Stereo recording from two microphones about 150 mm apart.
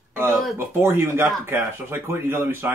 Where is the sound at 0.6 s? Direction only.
15° right (ahead or behind).